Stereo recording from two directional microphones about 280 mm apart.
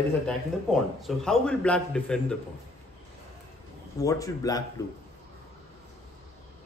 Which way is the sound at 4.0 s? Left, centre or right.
Centre.